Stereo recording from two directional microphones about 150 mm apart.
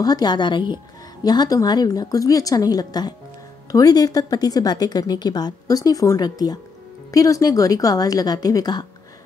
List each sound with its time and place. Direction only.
0.0 s speech: 25° left (ahead or behind)